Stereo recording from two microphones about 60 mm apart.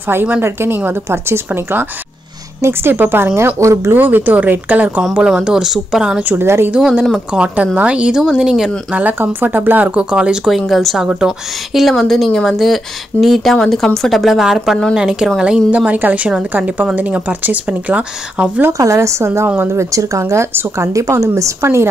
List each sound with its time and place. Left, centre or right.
0.4 s speech: right
3.3 s a woman's voice: right
3.9 s speech: right
5.4 s speech: centre
6.2 s speech: right
6.8 s speech: centre
7.3 s speech: right
8.9 s speech: right
10.4 s speech: centre
15.7 s speech: right
18.7 s a woman's voice: right